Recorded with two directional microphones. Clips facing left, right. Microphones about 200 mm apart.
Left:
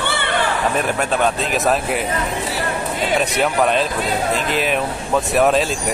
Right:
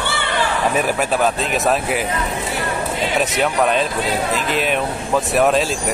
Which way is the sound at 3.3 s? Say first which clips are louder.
Even; centre (ahead or behind).